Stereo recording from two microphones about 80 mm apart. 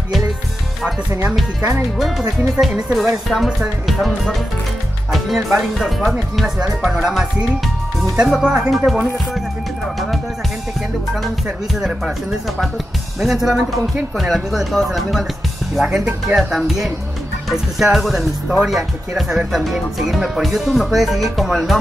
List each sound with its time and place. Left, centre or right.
2.0 s speech: centre
11.4 s speech: centre
15.9 s speech: centre
16.3 s speech: centre